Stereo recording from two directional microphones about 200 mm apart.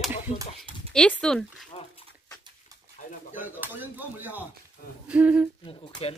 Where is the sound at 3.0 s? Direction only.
40° left (ahead or behind).